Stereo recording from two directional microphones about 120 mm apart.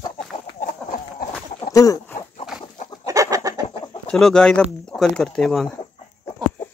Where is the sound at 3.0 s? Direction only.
30° right (ahead or behind).